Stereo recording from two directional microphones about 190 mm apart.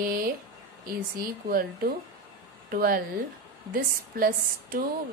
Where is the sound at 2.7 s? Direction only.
50° right (ahead or behind).